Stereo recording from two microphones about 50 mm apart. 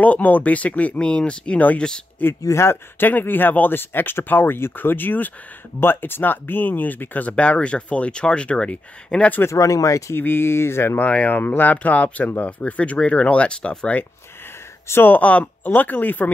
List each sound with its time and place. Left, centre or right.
0.0 s speech: left
0.9 s speech: left
2.5 s speech: left
3.0 s speech: left
9.5 s speech: left
10.1 s speech: left
11.0 s speech: left
15.0 s speech: left